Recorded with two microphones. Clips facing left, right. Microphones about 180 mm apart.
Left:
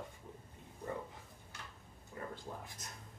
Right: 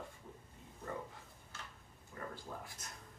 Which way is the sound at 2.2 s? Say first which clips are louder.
Left 1 dB; 20° left (ahead or behind).